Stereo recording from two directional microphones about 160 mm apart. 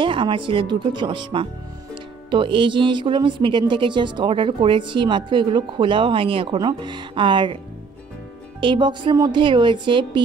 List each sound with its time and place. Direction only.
0.0 s a woman's voice: 30° right (ahead or behind)
8.5 s speech: 30° right (ahead or behind)